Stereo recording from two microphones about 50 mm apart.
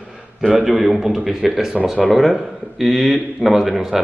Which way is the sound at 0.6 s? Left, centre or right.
Centre.